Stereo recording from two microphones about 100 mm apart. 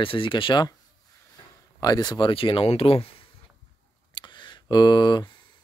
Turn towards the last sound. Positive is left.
turn(degrees=45)  # may be behind; listen again after turning